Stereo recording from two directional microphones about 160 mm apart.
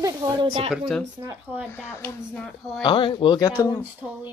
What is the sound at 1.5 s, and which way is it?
Speech, 15° right (ahead or behind).